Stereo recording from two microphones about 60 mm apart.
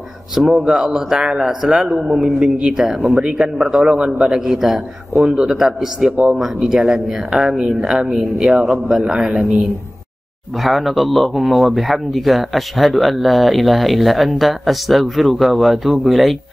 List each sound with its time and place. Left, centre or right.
0.4 s speech: centre
10.6 s speech: centre